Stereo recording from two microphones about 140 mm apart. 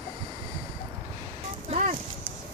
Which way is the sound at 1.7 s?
60° right (ahead or behind).